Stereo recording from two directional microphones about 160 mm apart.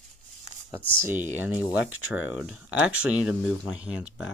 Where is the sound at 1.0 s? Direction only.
15° right (ahead or behind).